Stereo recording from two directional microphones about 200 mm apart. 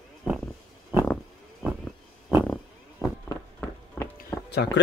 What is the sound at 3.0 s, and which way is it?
Fireworks, 10° right (ahead or behind).